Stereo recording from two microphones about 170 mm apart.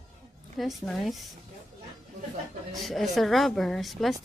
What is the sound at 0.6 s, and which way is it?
Speech, centre (ahead or behind).